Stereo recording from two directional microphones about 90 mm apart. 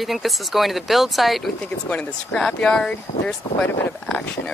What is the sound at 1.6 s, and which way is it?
Speech, 10° left (ahead or behind).